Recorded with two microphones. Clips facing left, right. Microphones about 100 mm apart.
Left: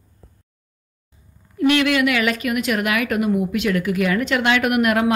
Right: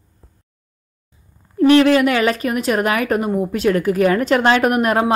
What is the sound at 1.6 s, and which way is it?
A woman's voice, 35° right (ahead or behind).